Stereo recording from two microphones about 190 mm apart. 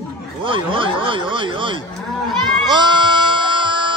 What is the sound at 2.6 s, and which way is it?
Music, 25° right (ahead or behind).